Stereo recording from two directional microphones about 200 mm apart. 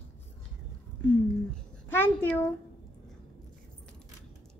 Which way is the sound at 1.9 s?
10° left (ahead or behind).